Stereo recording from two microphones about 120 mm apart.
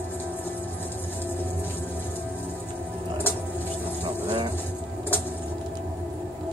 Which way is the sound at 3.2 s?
15° left (ahead or behind).